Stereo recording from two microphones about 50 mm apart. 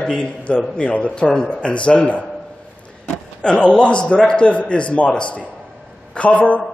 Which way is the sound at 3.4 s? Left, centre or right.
Left.